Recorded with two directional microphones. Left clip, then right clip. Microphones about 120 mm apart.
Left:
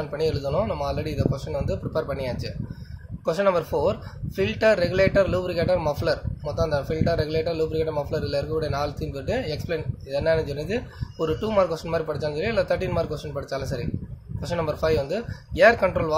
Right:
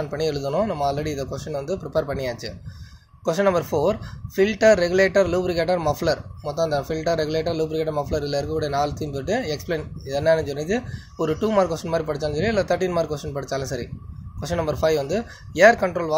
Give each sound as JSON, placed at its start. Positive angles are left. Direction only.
{"t": 0.0, "sound": "speech", "side_deg": -35}